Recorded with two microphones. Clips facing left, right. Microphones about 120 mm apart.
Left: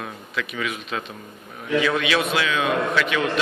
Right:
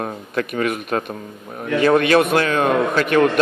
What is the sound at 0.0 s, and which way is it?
A man's voice, 50° right (ahead or behind).